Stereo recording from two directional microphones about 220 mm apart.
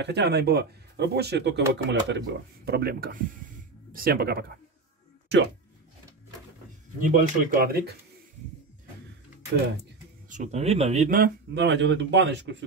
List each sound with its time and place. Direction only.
0.0 s speech: 50° right (ahead or behind)
7.0 s speech: 35° right (ahead or behind)
10.2 s speech: 35° right (ahead or behind); by 12.6 s 55° right (ahead or behind)